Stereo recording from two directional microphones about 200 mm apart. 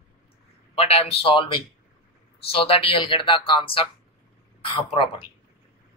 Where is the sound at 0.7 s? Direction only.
30° left (ahead or behind).